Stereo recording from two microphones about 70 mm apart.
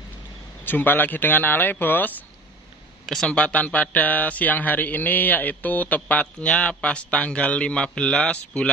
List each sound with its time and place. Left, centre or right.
0.7 s a man's voice: left
3.3 s a man's voice: centre